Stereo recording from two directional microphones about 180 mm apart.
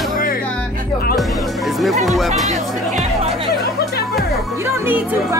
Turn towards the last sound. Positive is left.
turn(degrees=-10)  # may be behind; listen again after turning